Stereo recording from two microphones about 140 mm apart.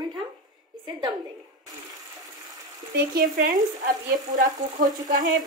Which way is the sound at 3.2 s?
90° right.